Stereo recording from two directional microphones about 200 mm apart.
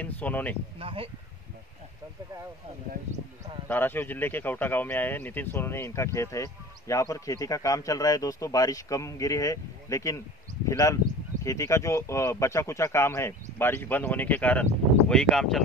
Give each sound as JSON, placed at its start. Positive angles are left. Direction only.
{"t": 0.0, "sound": "speech", "side_deg": 10}
{"t": 0.7, "sound": "speech", "side_deg": -30}
{"t": 3.6, "sound": "speech", "side_deg": 10}